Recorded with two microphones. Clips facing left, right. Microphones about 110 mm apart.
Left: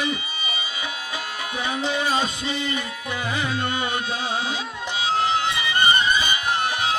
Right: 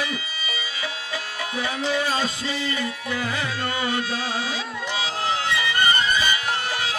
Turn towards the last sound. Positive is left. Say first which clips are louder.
# left 3 dB
turn(degrees=20)  # may be behind; listen again after turning